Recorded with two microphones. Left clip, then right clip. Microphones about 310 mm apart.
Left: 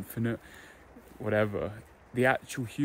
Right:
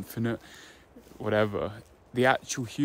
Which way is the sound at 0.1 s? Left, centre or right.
Centre.